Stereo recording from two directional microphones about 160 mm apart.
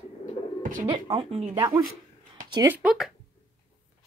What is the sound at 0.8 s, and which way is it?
Speech, 35° right (ahead or behind).